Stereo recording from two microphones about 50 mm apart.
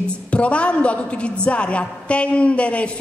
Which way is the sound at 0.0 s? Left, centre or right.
Left.